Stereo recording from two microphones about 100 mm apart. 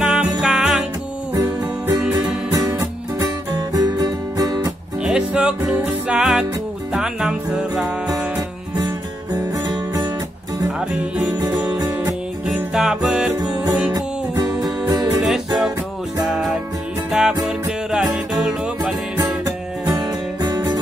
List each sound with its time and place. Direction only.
0.0 s music: 10° right (ahead or behind)
1.3 s music: 35° right (ahead or behind)
5.0 s music: 10° right (ahead or behind)
8.4 s music: 40° right (ahead or behind)
12.5 s music: 10° right (ahead or behind)
14.6 s music: 35° right (ahead or behind)
15.2 s music: 5° right (ahead or behind)
17.1 s music: 5° right (ahead or behind)
19.4 s music: 40° right (ahead or behind)